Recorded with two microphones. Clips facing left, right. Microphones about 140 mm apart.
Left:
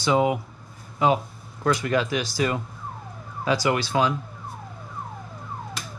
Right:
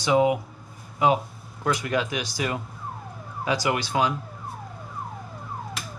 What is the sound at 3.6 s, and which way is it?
Speech, 10° right (ahead or behind).